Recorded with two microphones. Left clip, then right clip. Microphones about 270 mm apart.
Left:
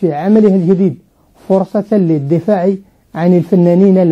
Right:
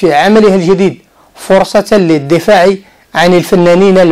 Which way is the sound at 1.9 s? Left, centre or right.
Centre.